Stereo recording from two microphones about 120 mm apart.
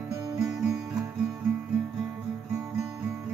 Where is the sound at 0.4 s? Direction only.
5° right (ahead or behind).